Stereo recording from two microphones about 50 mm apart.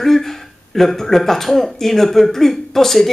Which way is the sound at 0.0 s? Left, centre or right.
Centre.